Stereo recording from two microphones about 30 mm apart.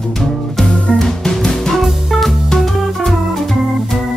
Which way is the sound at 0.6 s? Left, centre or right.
Left.